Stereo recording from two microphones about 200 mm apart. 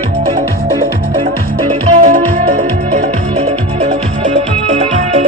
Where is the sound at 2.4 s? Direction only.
30° right (ahead or behind).